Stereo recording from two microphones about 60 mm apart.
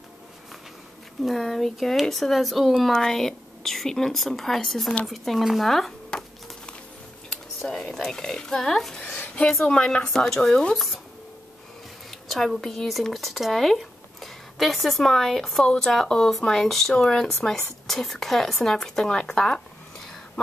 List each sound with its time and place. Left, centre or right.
1.2 s speech: centre
7.2 s speech: centre
9.0 s a sound: left
9.7 s speech: centre
12.1 s speech: centre